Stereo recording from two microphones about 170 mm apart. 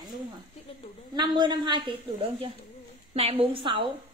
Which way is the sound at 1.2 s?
25° right (ahead or behind).